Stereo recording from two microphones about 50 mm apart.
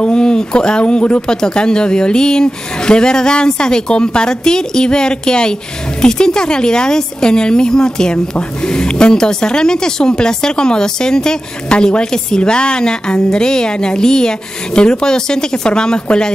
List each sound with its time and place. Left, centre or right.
0.0 s speech: centre